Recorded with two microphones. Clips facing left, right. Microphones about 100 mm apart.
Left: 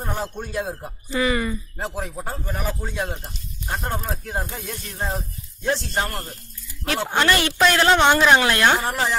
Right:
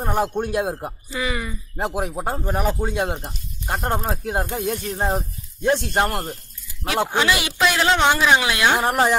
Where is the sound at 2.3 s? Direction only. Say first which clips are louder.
Right 6 dB; 35° right (ahead or behind).